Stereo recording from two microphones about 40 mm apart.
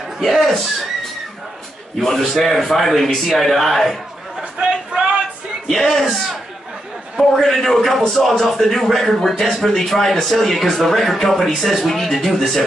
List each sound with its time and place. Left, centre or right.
0.2 s speech: centre
2.0 s a man's voice: centre
4.4 s a sound: right
5.7 s a man's voice: centre
7.3 s speech: centre